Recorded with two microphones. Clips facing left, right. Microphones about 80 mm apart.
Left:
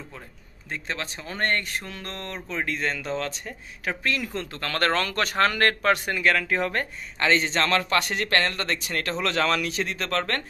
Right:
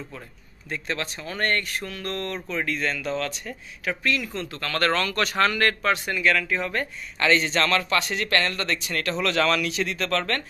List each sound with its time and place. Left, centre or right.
0.7 s speech: left
8.0 s speech: left